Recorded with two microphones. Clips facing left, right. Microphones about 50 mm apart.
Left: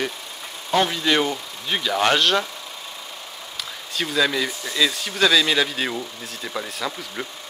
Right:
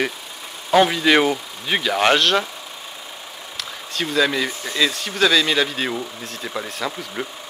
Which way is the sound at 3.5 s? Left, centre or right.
Centre.